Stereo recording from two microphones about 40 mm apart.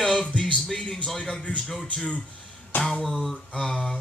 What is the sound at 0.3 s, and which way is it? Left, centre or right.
Music, left.